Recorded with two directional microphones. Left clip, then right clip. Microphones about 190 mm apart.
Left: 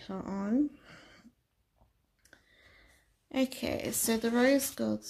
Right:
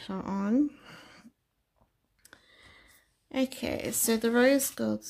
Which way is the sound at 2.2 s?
25° right (ahead or behind).